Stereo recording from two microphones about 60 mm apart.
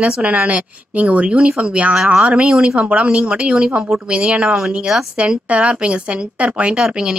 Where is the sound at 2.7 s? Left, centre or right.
Right.